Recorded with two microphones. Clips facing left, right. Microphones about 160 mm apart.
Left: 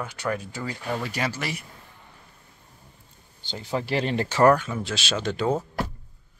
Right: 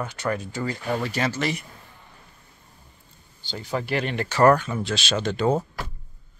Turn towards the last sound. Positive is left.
turn(degrees=0)  # may be behind; listen again after turning